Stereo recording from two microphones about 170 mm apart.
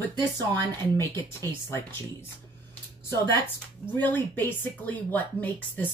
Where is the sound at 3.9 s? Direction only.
10° left (ahead or behind).